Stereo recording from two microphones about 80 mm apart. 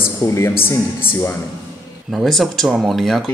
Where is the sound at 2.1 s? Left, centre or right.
Centre.